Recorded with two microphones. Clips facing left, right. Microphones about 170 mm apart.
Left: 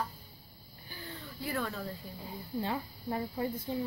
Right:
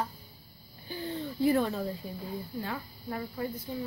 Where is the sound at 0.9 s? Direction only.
25° right (ahead or behind).